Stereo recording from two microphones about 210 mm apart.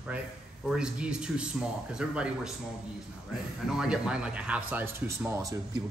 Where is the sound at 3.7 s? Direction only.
5° right (ahead or behind).